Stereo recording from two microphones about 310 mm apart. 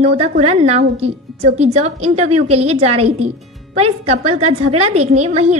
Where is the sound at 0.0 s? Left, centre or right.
Centre.